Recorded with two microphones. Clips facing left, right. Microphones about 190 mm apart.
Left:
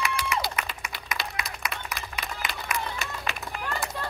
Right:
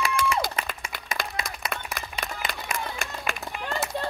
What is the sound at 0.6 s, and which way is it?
Applause, 30° right (ahead or behind).